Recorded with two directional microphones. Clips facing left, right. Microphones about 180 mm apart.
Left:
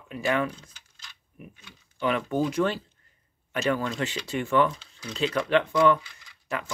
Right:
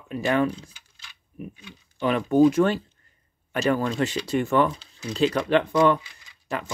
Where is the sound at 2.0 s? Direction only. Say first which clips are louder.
Right 7 dB; 35° right (ahead or behind).